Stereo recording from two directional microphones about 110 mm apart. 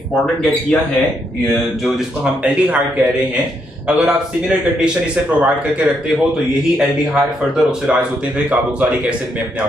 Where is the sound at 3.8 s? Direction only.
5° right (ahead or behind).